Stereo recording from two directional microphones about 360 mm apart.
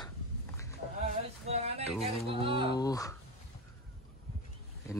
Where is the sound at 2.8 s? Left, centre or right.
Centre.